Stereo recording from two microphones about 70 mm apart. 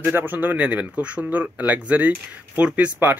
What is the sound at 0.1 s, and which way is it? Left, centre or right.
Speech, right.